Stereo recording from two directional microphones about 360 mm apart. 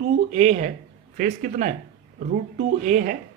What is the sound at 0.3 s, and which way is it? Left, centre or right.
Speech, centre.